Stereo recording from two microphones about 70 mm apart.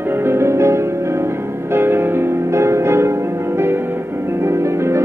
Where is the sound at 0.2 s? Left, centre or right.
Right.